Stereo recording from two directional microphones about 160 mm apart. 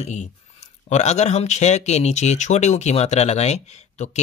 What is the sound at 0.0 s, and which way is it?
Speech, 45° left (ahead or behind).